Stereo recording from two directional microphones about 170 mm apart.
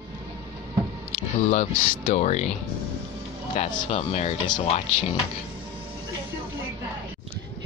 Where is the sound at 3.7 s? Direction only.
35° left (ahead or behind).